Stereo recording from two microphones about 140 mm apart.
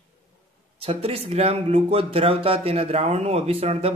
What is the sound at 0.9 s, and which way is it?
Speech, 45° right (ahead or behind).